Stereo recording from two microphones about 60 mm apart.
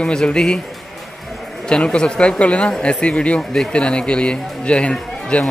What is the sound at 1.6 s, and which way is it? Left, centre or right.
Speech, centre.